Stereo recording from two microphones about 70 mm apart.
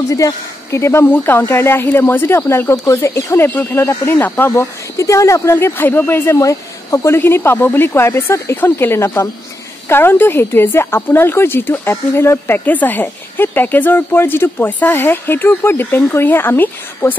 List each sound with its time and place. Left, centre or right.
0.1 s a woman's voice: left
4.9 s a woman's voice: left